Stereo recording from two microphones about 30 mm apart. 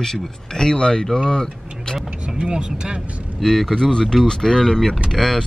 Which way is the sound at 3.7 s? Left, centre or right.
Left.